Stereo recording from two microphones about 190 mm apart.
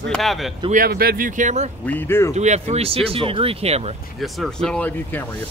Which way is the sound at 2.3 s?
35° right (ahead or behind).